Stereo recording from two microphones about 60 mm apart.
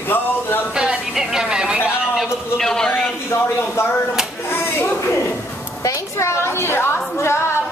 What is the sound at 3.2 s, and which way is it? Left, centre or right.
Speech, left.